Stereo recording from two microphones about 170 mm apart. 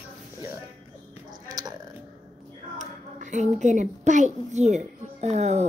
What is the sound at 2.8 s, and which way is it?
A child's voice, 45° right (ahead or behind).